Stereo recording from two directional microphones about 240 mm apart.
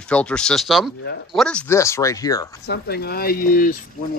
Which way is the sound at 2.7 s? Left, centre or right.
Left.